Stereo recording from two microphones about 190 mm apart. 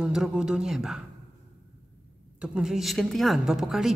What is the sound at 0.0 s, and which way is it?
A man's voice, 5° right (ahead or behind).